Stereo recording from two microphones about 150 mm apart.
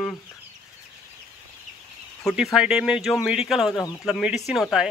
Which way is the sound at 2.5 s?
5° right (ahead or behind).